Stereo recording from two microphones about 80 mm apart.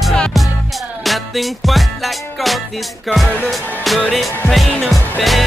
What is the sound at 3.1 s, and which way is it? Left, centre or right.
Music, centre.